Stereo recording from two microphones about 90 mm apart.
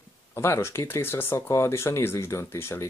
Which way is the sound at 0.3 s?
25° left (ahead or behind).